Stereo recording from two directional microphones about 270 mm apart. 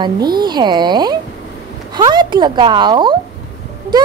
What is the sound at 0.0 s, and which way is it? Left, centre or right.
A woman's voice, centre.